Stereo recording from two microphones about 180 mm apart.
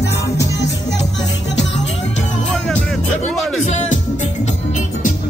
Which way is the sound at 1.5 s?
85° left.